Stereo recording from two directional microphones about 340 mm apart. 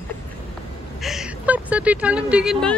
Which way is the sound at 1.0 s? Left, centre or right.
Centre.